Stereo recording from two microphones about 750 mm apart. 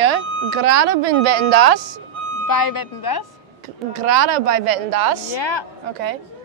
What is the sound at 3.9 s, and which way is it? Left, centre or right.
Speech, right.